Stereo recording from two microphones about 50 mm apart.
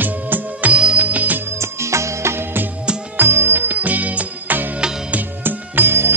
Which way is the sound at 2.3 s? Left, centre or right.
Right.